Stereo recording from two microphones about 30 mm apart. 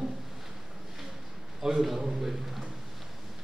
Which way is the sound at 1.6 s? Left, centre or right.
Centre.